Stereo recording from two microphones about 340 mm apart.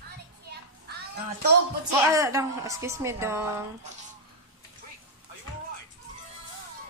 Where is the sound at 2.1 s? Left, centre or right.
Centre.